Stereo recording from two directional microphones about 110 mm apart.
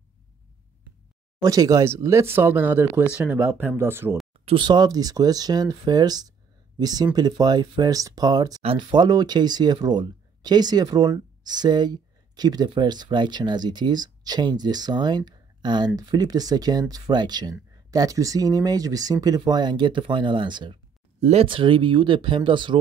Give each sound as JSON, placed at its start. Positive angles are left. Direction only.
{"t": 1.4, "sound": "speech", "side_deg": -35}
{"t": 4.5, "sound": "speech", "side_deg": -45}
{"t": 21.2, "sound": "speech", "side_deg": -80}
{"t": 21.5, "sound": "speech", "side_deg": -50}